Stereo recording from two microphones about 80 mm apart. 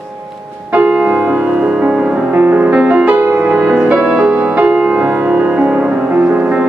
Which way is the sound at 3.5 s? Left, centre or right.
Centre.